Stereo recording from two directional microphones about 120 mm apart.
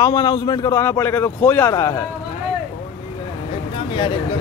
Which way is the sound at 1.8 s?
25° left (ahead or behind).